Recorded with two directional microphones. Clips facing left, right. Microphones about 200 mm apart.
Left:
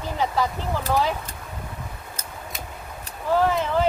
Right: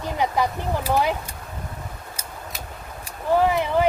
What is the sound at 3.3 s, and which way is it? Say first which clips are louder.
Speech: right 2 dB; 15° right (ahead or behind).